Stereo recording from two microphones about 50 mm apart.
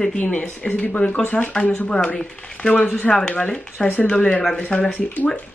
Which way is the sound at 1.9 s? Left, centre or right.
Centre.